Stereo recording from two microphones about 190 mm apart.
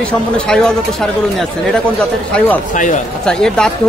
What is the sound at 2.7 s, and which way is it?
Speech, 40° left (ahead or behind).